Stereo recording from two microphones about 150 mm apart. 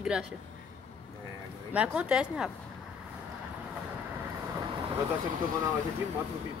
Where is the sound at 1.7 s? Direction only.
10° right (ahead or behind).